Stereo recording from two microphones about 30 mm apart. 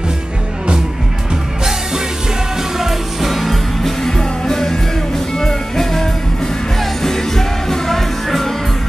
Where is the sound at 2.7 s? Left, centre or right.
Centre.